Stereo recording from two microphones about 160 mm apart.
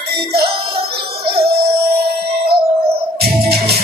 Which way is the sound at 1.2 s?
80° right.